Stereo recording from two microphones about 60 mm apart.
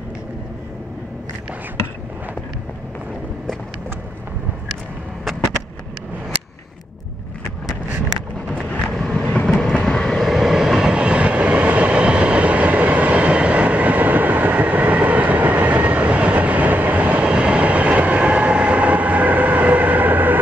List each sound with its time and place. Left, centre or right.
8.5 s vehicle: centre; by 20.3 s right